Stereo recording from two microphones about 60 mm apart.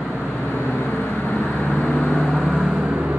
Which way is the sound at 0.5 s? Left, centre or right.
Left.